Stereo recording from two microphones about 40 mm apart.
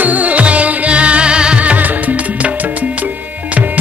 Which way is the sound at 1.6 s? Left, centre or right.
Right.